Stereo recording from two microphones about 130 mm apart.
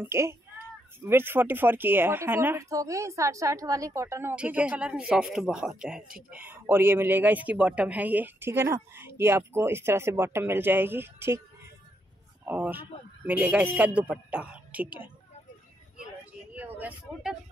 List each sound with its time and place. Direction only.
0.0 s speech: 20° right (ahead or behind); by 6.0 s 5° right (ahead or behind)
6.3 s speech: 15° right (ahead or behind)
12.4 s speech: 15° right (ahead or behind)
16.5 s vehicle: 15° right (ahead or behind)